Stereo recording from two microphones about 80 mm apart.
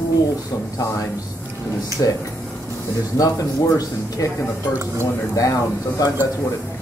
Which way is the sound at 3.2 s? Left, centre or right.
Left.